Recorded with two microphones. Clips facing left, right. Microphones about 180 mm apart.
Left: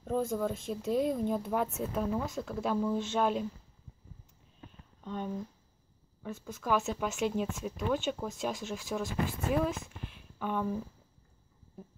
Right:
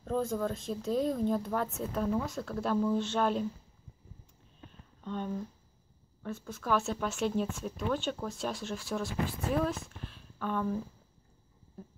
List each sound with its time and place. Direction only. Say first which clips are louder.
0.0 s speech: even; 10° left (ahead or behind)
5.0 s speech: right 1 dB; 5° left (ahead or behind)